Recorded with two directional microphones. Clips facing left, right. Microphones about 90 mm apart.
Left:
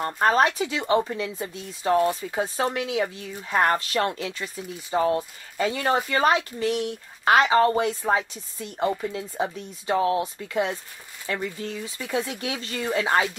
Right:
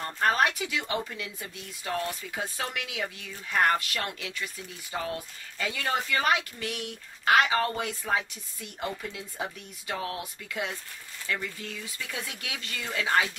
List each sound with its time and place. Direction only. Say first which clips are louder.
0.0 s speech: left 5 dB; 30° left (ahead or behind)